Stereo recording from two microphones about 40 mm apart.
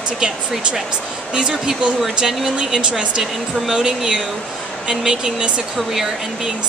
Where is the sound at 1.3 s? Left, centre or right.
Centre.